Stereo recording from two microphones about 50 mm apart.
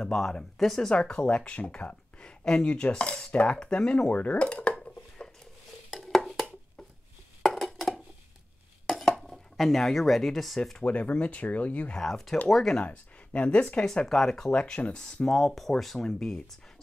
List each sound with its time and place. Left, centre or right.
0.0 s speech: centre
4.1 s dishes: left
5.9 s a sound: centre
7.4 s a sound: centre
9.2 s dishes: centre
9.9 s speech: centre
10.8 s speech: left
12.0 s speech: centre
12.8 s speech: left; by 14.5 s centre
14.5 s speech: left
15.2 s speech: centre